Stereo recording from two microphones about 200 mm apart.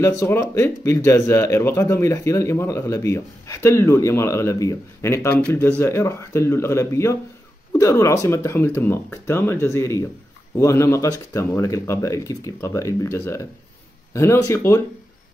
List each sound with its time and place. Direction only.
0.0 s speech: 15° left (ahead or behind)